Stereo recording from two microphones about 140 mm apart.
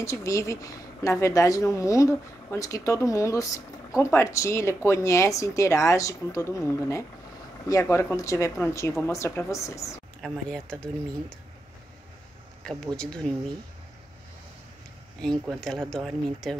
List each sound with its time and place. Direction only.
0.0 s speech: 20° left (ahead or behind)
10.2 s speech: 5° left (ahead or behind)
12.6 s speech: 5° left (ahead or behind)
15.6 s speech: 5° left (ahead or behind)